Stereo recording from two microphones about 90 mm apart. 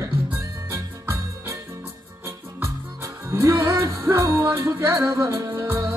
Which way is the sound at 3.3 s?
30° right (ahead or behind).